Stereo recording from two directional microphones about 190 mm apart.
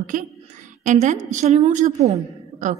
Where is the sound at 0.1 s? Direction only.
45° right (ahead or behind).